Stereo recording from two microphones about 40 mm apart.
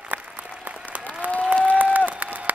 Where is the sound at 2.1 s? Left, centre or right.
Right.